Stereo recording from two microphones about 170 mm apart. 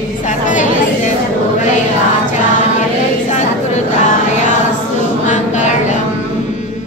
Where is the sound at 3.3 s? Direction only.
45° left (ahead or behind).